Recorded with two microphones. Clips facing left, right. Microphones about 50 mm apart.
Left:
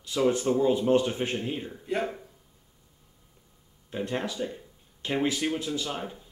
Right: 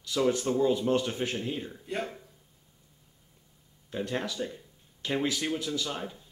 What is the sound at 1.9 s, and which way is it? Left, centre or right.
Speech, centre.